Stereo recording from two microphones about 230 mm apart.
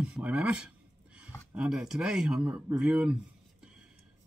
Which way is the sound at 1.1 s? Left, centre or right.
Centre.